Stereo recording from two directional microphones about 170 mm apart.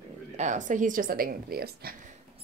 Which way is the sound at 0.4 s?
45° right (ahead or behind).